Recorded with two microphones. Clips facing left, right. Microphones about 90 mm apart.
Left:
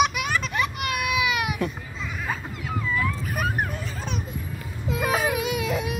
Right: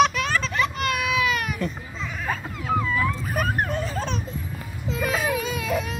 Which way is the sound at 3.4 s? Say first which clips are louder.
Right 3 dB; 40° right (ahead or behind).